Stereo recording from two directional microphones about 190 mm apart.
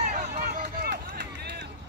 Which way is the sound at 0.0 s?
40° right (ahead or behind).